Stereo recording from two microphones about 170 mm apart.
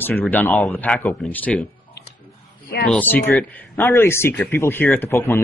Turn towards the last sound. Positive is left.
turn(degrees=15)  # may be behind; listen again after turning